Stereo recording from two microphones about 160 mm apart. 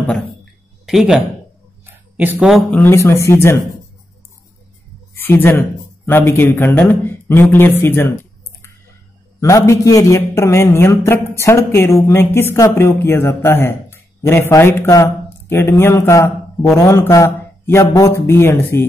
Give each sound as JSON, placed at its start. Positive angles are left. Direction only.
{"t": 0.8, "sound": "speech", "side_deg": 0}
{"t": 2.7, "sound": "a man's voice", "side_deg": 15}
{"t": 5.1, "sound": "speech", "side_deg": 15}
{"t": 9.4, "sound": "a man's voice", "side_deg": 20}